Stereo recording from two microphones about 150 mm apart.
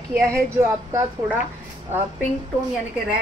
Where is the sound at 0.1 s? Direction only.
15° right (ahead or behind).